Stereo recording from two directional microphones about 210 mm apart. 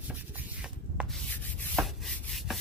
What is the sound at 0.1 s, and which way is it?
Rub, 5° right (ahead or behind).